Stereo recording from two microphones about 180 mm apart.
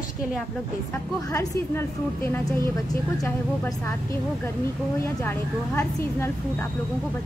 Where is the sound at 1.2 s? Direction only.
15° left (ahead or behind).